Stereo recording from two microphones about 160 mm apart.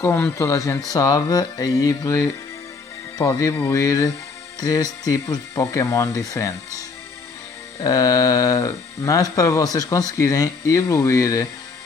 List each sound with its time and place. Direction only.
0.0 s speech: 15° left (ahead or behind)
7.8 s speech: 20° left (ahead or behind)